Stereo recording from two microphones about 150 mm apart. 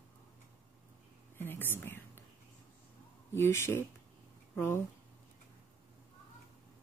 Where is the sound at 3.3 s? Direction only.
15° left (ahead or behind).